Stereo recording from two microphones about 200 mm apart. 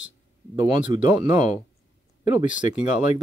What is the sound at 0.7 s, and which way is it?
Speech, 25° right (ahead or behind).